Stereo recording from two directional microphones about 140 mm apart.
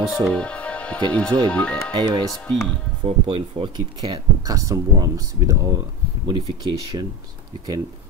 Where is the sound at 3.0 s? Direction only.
40° right (ahead or behind).